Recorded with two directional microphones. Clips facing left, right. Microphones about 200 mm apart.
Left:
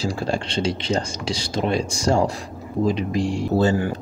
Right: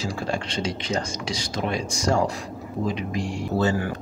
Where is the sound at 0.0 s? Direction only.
30° left (ahead or behind).